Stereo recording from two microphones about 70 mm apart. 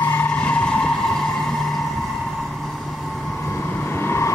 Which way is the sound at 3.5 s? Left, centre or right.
Left.